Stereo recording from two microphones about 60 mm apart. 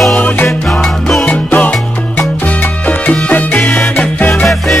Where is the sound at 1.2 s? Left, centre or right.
Left.